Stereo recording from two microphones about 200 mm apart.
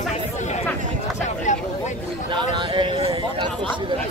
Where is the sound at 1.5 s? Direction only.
40° left (ahead or behind).